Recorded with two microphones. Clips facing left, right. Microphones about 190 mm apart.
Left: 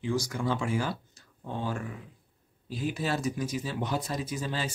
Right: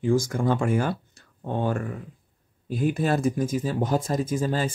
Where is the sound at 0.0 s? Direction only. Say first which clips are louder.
Right 7 dB; 50° right (ahead or behind).